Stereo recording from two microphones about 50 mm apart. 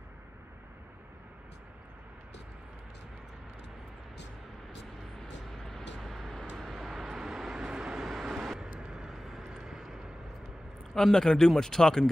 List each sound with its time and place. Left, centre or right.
5.2 s vehicle: centre
11.0 s speech: centre